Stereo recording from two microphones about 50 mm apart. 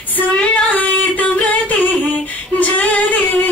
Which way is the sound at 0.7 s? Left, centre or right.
Left.